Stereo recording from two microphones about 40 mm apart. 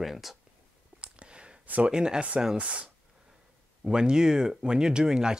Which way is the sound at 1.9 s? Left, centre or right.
Right.